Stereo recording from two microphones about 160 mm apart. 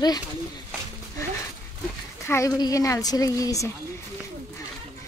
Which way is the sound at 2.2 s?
20° left (ahead or behind).